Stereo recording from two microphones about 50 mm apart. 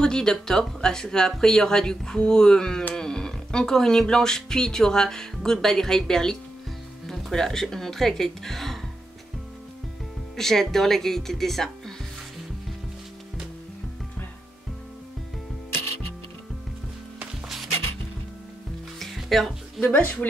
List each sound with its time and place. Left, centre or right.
0.0 s speech: centre
10.3 s speech: centre
18.9 s music: centre
19.8 s speech: left